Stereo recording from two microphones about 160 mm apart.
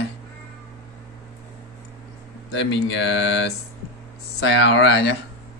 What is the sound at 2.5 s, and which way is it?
Speech, 90° left.